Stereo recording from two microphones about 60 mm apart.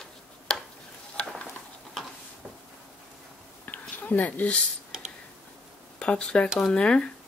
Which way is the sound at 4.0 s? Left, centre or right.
Left.